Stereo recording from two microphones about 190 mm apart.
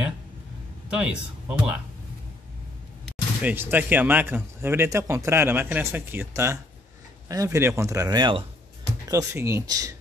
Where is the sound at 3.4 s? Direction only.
10° right (ahead or behind).